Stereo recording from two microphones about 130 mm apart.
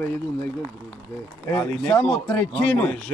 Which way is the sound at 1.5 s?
15° left (ahead or behind).